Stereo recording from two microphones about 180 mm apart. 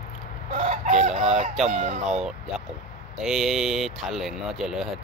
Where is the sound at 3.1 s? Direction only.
Centre (ahead or behind).